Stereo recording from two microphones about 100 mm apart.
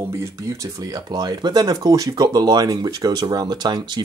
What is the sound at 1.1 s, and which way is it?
Speech, 45° right (ahead or behind).